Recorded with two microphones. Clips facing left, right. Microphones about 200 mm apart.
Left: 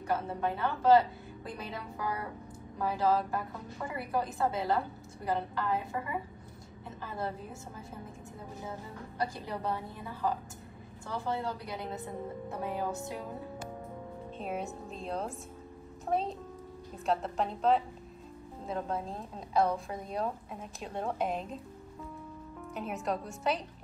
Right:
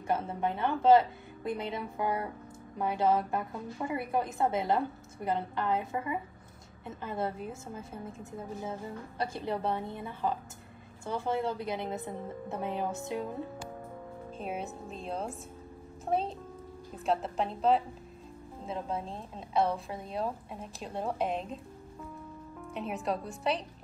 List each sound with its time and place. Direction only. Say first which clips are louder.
0.0 s a woman's voice: right 1 dB; 20° right (ahead or behind)
9.2 s a woman's voice: right 2 dB; 25° right (ahead or behind)
14.4 s speech: even; centre (ahead or behind)
22.8 s speech: right 1 dB; centre (ahead or behind)